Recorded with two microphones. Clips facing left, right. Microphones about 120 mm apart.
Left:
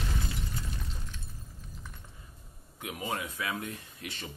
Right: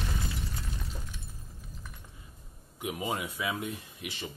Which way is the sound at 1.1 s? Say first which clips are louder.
Even; 10° right (ahead or behind).